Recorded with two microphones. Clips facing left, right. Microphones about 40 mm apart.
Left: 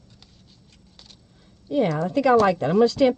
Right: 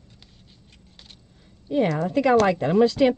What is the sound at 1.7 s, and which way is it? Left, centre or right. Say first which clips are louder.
Speech: even; centre.